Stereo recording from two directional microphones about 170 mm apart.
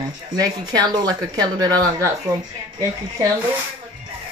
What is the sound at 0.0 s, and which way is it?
Speech, 25° right (ahead or behind).